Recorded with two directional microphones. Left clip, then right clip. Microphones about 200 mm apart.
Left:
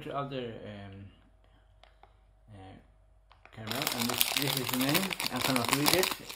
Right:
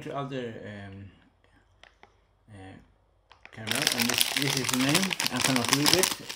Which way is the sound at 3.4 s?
10° right (ahead or behind).